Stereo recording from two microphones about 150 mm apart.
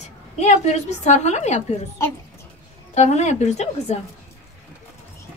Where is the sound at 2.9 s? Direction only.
50° left (ahead or behind).